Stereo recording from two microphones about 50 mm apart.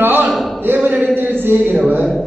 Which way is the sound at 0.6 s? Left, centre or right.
Right.